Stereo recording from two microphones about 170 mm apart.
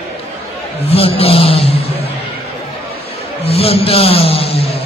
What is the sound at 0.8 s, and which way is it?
A man's voice, 35° left (ahead or behind).